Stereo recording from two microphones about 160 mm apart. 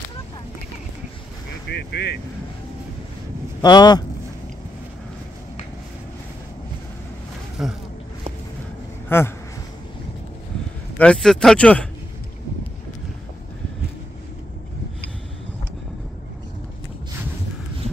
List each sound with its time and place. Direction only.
1.7 s speech: 90° left
3.6 s speech: 25° left (ahead or behind)
7.6 s speech: 5° right (ahead or behind)
9.1 s speech: 15° left (ahead or behind)
11.0 s speech: 5° left (ahead or behind)